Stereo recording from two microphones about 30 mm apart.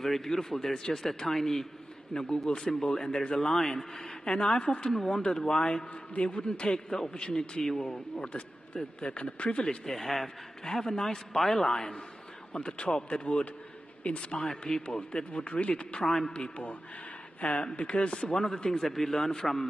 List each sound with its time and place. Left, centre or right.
0.0 s a man's voice: centre
2.1 s a man's voice: left
4.9 s a man's voice: centre
6.1 s a man's voice: left
9.0 s speech: left
9.8 s a man's voice: centre
10.6 s a man's voice: left
12.5 s a man's voice: left
14.4 s a man's voice: left
15.4 s a man's voice: left
16.1 s a man's voice: centre
16.3 s a man's voice: left
18.7 s a man's voice: centre